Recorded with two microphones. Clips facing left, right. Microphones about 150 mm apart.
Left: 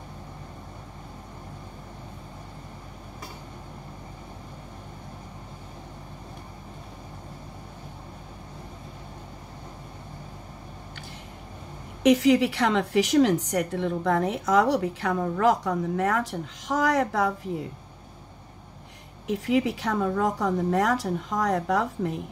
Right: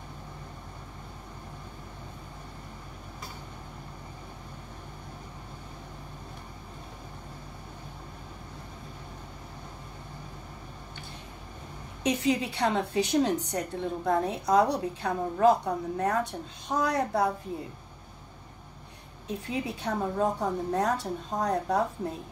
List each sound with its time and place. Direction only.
12.0 s a woman's voice: 90° left
19.2 s a woman's voice: 90° left